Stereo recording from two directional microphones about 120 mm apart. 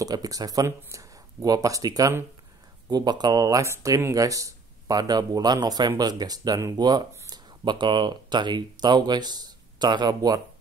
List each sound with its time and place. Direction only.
0.0 s speech: 30° right (ahead or behind)